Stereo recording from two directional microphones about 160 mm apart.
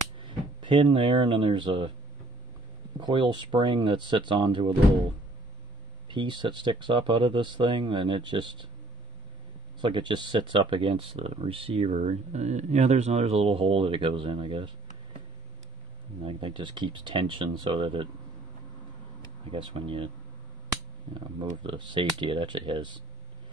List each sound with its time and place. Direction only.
0.2 s speech: 30° right (ahead or behind)
3.0 s speech: 30° right (ahead or behind)
6.0 s speech: 30° right (ahead or behind)
9.8 s speech: 30° right (ahead or behind)
16.3 s speech: 35° right (ahead or behind)
19.5 s speech: 35° right (ahead or behind)
21.6 s speech: 30° right (ahead or behind)